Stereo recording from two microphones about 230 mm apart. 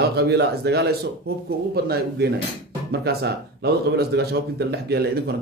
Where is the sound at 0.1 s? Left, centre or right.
Right.